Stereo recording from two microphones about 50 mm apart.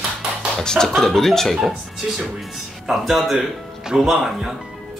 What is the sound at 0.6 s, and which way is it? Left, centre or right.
Speech, centre.